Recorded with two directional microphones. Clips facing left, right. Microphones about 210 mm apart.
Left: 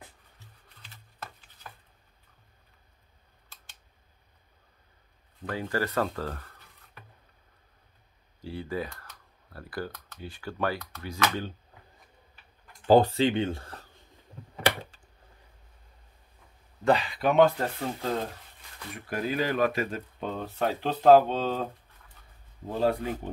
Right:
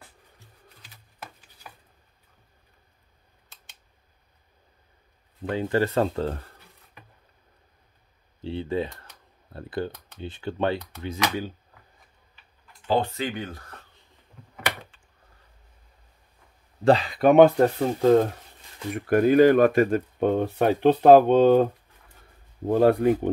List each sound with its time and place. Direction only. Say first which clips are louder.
0.8 s patter: even; 10° right (ahead or behind)
5.4 s speech: right 6 dB; 25° right (ahead or behind)
8.4 s speech: right 6 dB; 25° right (ahead or behind)
12.8 s speech: left 5 dB; 40° left (ahead or behind)
16.8 s speech: right 6 dB; 35° right (ahead or behind); by 21.6 s 60° right (ahead or behind)
22.7 s speech: right 9 dB; 60° right (ahead or behind)